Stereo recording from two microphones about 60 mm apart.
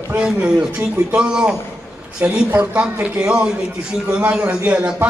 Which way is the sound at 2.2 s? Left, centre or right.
Right.